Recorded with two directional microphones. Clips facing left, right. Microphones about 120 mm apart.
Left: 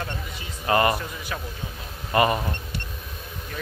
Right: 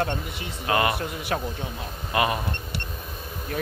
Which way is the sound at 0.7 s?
Centre (ahead or behind).